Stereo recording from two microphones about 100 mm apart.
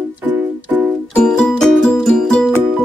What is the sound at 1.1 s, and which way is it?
Music, 10° left (ahead or behind).